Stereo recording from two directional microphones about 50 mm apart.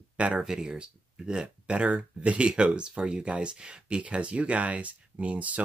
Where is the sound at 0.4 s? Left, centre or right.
Centre.